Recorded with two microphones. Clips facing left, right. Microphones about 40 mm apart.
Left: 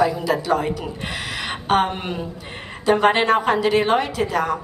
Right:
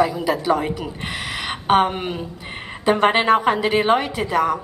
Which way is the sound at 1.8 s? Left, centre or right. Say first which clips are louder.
Right 2 dB; centre.